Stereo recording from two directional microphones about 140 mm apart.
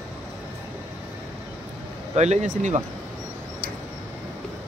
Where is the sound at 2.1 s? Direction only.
55° right (ahead or behind).